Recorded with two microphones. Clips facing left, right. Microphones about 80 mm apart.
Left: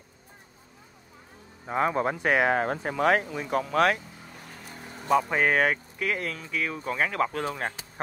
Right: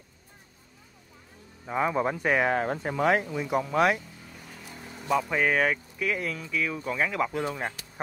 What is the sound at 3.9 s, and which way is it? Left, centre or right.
Vehicle, centre.